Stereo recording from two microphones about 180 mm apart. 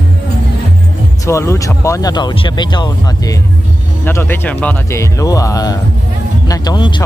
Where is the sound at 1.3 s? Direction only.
15° left (ahead or behind).